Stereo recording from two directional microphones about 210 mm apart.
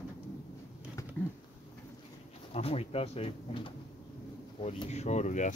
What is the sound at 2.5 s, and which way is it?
Speech, 30° left (ahead or behind).